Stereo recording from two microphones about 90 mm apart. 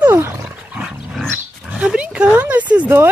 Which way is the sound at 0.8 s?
5° right (ahead or behind).